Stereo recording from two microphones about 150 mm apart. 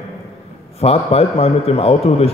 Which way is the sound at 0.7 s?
45° left (ahead or behind).